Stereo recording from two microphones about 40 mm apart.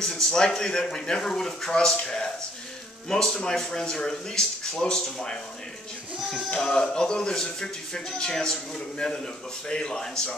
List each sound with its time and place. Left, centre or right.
0.0 s speech: centre
6.5 s speech: centre